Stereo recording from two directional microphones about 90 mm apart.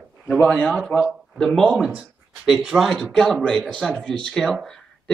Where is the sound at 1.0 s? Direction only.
Centre (ahead or behind).